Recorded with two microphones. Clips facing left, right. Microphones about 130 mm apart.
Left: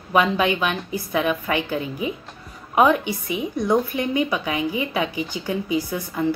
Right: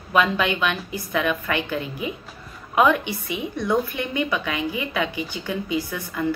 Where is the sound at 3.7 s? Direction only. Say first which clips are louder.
Left 2 dB; 15° left (ahead or behind).